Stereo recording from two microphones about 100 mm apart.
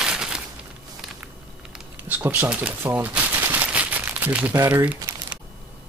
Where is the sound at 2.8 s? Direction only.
20° right (ahead or behind).